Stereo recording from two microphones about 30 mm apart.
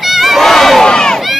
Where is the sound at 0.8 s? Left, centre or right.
Left.